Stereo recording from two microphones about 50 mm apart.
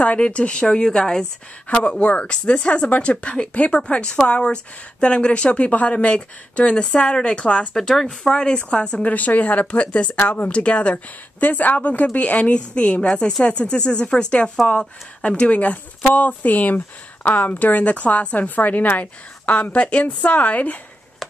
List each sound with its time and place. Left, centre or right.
0.0 s speech: left
1.7 s speech: left
7.7 s speech: centre
9.0 s speech: left
10.2 s speech: left
10.5 s speech: left